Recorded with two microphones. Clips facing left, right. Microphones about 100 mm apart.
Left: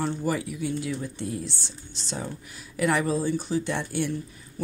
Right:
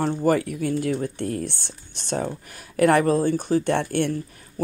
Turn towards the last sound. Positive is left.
turn(degrees=-55)  # may be behind; listen again after turning